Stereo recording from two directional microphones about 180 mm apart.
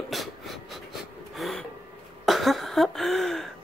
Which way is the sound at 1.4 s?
Centre (ahead or behind).